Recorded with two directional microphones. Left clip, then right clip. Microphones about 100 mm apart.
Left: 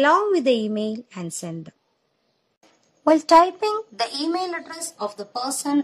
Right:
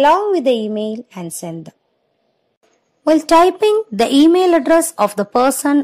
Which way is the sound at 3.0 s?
20° right (ahead or behind).